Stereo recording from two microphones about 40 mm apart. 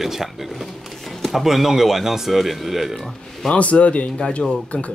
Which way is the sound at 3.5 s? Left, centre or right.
Left.